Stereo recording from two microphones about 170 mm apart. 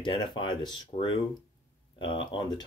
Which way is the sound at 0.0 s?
30° left (ahead or behind).